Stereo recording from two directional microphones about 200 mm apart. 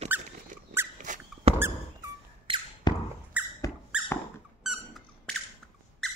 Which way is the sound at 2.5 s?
25° right (ahead or behind).